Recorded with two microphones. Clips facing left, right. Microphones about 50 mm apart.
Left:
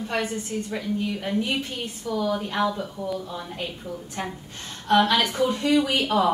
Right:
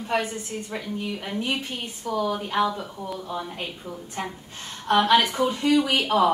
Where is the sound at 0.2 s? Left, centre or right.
Centre.